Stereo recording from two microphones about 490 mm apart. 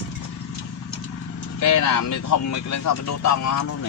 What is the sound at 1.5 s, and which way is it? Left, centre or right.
Speech, left.